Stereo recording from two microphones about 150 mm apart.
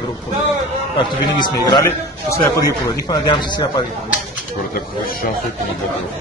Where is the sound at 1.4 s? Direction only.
30° left (ahead or behind).